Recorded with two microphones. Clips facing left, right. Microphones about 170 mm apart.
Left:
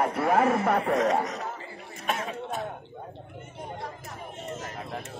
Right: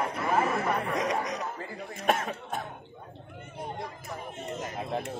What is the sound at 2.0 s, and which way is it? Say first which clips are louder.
Cough: right 3 dB; 50° right (ahead or behind).